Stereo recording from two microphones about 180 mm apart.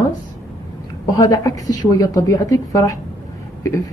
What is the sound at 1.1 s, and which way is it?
Speech, 20° left (ahead or behind).